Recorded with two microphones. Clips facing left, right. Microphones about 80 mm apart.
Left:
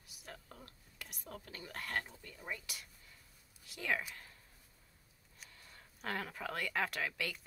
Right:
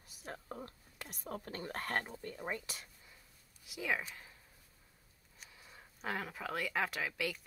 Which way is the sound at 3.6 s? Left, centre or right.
Centre.